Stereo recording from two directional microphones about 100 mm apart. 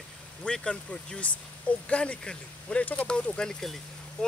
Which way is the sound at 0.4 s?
10° left (ahead or behind).